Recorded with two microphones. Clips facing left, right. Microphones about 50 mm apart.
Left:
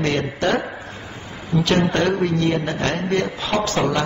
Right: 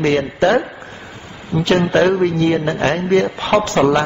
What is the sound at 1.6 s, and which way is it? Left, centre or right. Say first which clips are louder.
A man's voice: right 6 dB; right.